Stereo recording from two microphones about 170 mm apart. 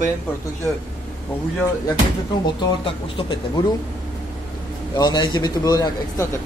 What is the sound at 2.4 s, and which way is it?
Speech, 30° left (ahead or behind).